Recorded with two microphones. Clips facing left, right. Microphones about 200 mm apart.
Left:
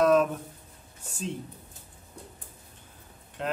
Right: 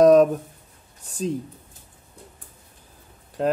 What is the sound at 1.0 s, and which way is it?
Speech, 35° right (ahead or behind).